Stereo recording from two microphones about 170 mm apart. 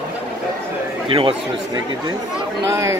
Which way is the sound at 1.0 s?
30° right (ahead or behind).